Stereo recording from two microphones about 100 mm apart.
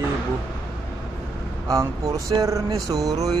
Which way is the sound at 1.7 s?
35° right (ahead or behind).